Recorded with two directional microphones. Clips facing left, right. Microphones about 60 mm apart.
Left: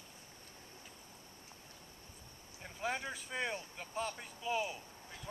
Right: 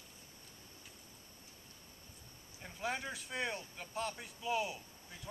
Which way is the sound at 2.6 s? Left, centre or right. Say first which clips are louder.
Left 1 dB; centre.